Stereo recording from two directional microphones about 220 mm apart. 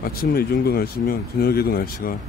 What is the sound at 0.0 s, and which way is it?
Speech, 40° left (ahead or behind).